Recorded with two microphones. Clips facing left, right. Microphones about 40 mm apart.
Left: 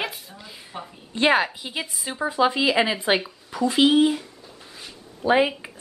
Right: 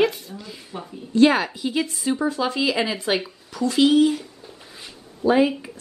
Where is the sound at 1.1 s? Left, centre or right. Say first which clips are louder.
Right 3 dB; left.